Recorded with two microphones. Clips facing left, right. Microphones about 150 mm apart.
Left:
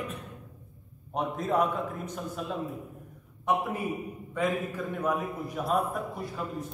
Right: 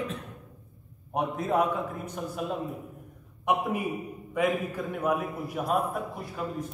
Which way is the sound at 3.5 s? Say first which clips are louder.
Right 1 dB; 15° right (ahead or behind).